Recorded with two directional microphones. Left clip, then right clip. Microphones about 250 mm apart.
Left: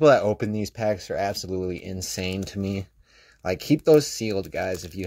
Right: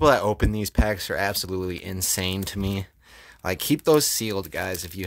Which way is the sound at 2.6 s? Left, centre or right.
Right.